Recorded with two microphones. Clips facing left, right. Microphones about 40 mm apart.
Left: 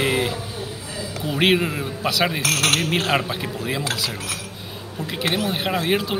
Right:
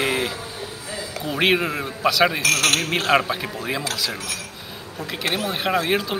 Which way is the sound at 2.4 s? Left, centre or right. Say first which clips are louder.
Right 1 dB; left.